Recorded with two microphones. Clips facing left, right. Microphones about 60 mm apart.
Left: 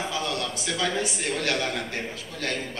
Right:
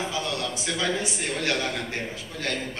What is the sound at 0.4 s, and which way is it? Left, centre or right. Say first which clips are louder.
A man's voice: even; centre.